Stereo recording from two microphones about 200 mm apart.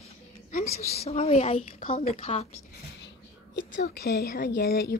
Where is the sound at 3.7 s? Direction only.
50° left (ahead or behind).